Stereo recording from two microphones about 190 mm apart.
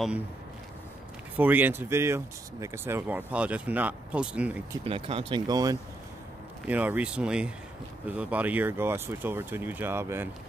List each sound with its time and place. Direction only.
1.3 s speech: 10° right (ahead or behind)
4.8 s speech: 30° right (ahead or behind)
6.7 s speech: 10° right (ahead or behind)